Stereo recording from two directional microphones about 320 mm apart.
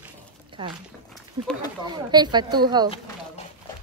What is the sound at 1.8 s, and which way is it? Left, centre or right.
Speech, centre.